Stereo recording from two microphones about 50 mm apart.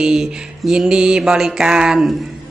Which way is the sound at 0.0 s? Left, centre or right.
Centre.